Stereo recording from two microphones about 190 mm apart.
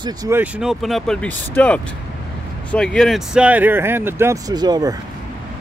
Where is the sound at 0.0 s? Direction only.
20° right (ahead or behind).